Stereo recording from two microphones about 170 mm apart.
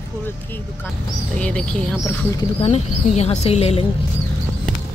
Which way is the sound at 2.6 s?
40° left (ahead or behind).